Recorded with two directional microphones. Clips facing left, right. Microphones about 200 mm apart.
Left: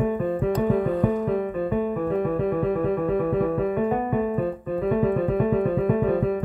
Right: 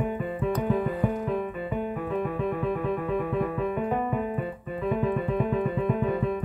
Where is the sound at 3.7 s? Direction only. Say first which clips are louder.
Left 4 dB; 45° left (ahead or behind).